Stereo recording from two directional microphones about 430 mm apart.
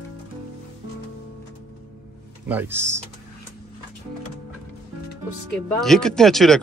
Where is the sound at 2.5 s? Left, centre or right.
Centre.